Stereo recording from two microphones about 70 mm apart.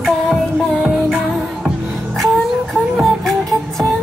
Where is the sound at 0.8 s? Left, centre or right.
Centre.